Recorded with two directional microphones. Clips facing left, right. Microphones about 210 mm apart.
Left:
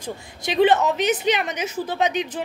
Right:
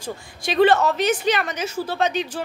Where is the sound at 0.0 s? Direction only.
15° left (ahead or behind).